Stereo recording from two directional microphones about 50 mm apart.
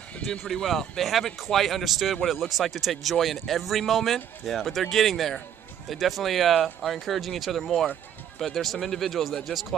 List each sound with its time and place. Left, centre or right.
0.2 s speech: centre
0.5 s a man's voice: centre